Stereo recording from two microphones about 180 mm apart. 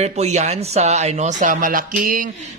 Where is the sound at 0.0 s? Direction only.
35° right (ahead or behind).